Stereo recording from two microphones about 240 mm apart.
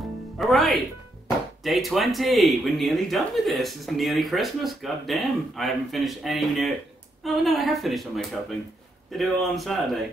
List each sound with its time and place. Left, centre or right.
0.4 s speech: centre